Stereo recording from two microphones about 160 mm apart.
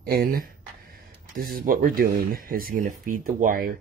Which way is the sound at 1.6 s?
60° right (ahead or behind).